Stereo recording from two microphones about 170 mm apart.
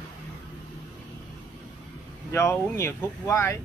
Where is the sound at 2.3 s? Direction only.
15° left (ahead or behind).